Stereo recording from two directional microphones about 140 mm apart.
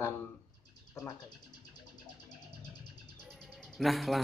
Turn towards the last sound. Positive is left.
turn(degrees=0)  # may be behind; listen again after turning